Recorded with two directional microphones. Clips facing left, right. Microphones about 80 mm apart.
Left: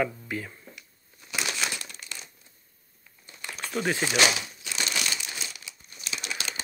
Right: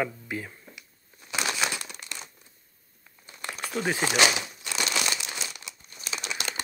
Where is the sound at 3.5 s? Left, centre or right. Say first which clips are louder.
Left 1 dB; centre.